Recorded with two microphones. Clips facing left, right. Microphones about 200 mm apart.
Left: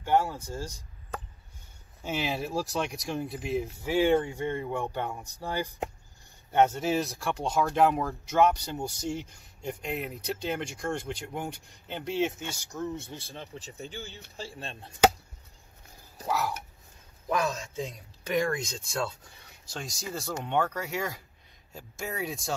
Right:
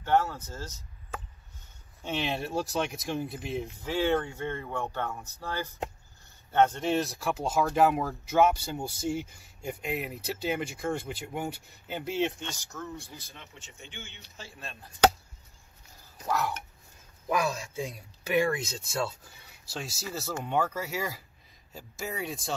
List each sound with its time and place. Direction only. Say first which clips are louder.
0.0 s speech: even; 10° left (ahead or behind)
2.0 s speech: left 1 dB; 5° left (ahead or behind)
3.8 s speech: left 3 dB; 10° left (ahead or behind); by 14.9 s 30° left (ahead or behind)
16.3 s speech: even; 5° left (ahead or behind)
17.3 s speech: even; 10° right (ahead or behind)